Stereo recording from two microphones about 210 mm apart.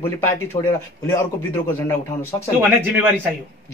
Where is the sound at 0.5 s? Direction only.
25° left (ahead or behind).